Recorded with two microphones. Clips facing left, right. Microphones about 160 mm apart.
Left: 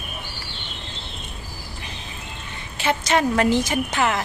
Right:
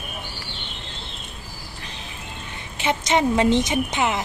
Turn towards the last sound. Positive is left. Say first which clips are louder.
# even
turn(degrees=-20)  # may be behind; listen again after turning